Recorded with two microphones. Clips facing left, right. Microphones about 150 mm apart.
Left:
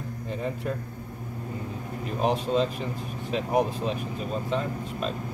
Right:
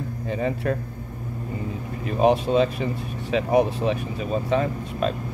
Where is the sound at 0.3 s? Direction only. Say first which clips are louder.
Right 6 dB; 75° right (ahead or behind).